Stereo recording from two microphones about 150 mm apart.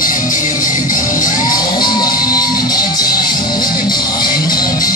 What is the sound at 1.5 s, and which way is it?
Crowd, 30° left (ahead or behind).